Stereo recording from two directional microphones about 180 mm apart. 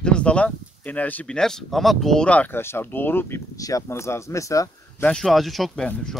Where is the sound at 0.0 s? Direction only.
5° left (ahead or behind).